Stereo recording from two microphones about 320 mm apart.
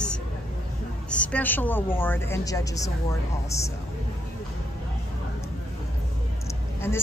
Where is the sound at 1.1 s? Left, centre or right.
Centre.